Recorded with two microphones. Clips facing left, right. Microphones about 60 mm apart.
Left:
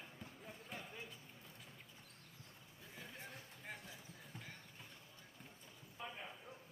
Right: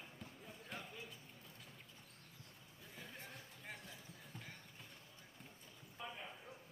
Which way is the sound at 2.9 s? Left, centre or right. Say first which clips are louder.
Left 1 dB; centre.